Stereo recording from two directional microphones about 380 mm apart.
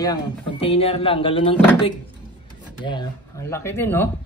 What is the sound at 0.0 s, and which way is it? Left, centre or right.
Speech, centre.